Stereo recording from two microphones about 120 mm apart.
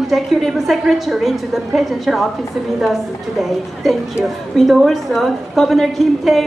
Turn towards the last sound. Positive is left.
turn(degrees=0)  # may be behind; listen again after turning